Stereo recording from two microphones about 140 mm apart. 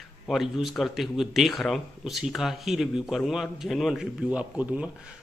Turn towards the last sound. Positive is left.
turn(degrees=-10)  # may be behind; listen again after turning